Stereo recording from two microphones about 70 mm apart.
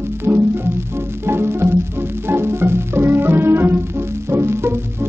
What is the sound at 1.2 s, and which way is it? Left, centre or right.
Music, right.